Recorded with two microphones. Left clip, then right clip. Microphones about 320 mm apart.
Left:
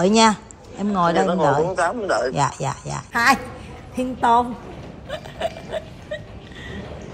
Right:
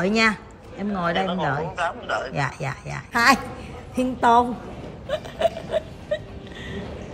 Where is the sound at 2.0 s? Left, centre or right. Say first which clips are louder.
Left 6 dB; centre.